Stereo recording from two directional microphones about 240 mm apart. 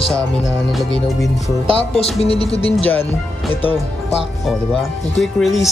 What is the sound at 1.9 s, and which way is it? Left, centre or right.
Speech, left.